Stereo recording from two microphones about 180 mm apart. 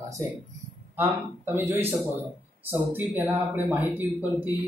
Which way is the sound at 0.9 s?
15° right (ahead or behind).